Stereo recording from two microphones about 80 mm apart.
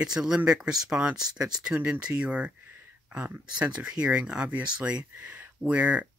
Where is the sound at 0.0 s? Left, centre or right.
Centre.